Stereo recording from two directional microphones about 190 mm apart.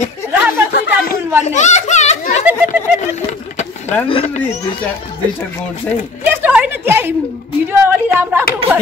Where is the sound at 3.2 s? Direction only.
35° left (ahead or behind).